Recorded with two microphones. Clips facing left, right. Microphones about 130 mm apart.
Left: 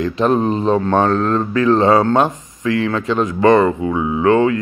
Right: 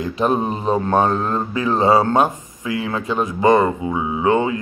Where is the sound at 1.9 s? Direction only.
25° right (ahead or behind).